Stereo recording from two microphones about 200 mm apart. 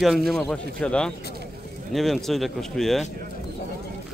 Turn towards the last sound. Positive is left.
turn(degrees=0)  # may be behind; listen again after turning